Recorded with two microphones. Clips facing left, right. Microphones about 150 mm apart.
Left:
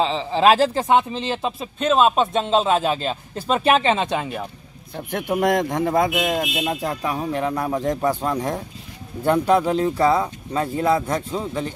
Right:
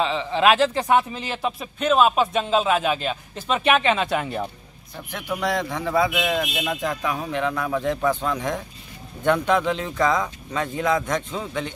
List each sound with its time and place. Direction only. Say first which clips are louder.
0.0 s speech: left 2 dB; 30° left (ahead or behind)
4.9 s a man's voice: left 7 dB; 55° left (ahead or behind); by 11.7 s 35° left (ahead or behind)